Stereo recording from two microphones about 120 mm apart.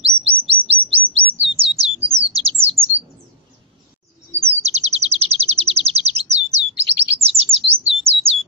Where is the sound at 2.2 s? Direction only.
55° right (ahead or behind).